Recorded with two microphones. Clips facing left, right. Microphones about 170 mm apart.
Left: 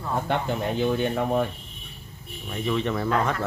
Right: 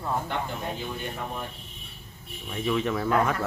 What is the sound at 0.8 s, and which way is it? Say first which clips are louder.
Speech: left 10 dB; 75° left (ahead or behind).